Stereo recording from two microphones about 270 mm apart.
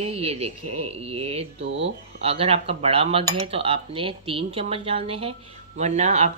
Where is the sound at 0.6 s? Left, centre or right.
Right.